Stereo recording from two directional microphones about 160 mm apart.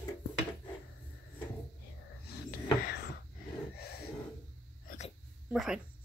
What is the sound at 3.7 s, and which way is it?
Snort, 75° left (ahead or behind).